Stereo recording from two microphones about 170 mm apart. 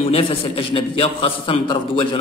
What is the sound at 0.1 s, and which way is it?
A man's voice, 35° left (ahead or behind).